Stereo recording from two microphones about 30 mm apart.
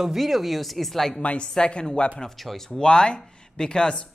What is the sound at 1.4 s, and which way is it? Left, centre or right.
Speech, left.